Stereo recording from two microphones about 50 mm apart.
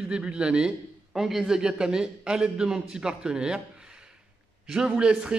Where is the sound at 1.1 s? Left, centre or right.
Centre.